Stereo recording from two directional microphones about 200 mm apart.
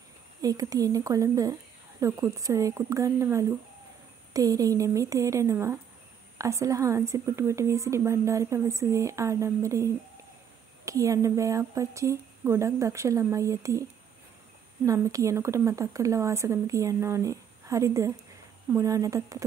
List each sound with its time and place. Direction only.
0.4 s a woman's voice: 15° right (ahead or behind)
14.9 s a woman's voice: 15° right (ahead or behind)